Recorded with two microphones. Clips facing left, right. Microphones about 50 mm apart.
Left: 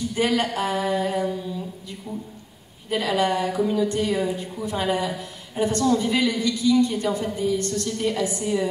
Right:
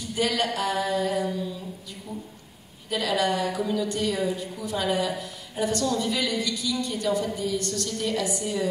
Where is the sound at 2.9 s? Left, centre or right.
Left.